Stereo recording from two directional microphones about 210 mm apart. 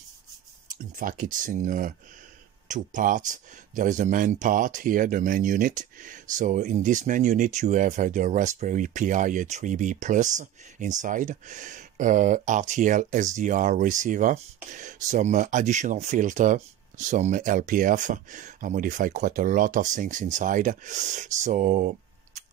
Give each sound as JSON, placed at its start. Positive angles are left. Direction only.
{"t": 0.9, "sound": "speech", "side_deg": -40}